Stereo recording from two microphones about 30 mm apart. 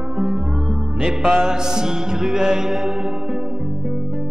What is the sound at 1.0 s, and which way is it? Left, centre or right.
Music, right.